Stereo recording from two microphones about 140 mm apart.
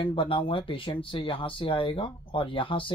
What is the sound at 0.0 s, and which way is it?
Speech, 40° left (ahead or behind).